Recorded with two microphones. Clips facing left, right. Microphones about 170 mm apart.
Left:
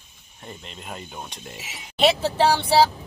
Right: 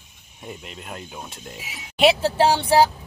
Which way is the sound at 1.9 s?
10° right (ahead or behind).